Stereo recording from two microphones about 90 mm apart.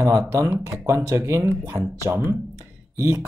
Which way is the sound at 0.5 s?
30° right (ahead or behind).